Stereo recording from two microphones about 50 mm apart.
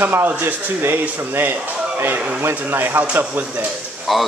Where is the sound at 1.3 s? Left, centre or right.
Right.